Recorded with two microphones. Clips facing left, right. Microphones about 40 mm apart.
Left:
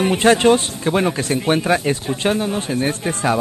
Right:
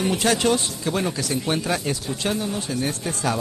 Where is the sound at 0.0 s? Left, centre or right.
Left.